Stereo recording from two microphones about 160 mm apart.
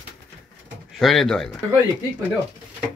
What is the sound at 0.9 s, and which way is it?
Speech, centre (ahead or behind).